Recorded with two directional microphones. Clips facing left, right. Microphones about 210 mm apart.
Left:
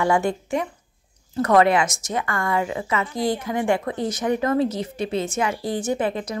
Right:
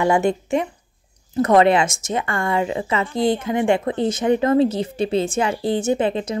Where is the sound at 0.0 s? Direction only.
20° right (ahead or behind).